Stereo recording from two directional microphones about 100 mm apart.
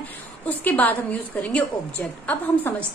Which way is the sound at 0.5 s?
15° left (ahead or behind).